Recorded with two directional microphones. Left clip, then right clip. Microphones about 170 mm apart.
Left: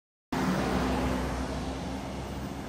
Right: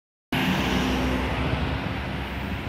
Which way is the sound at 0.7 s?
50° right (ahead or behind).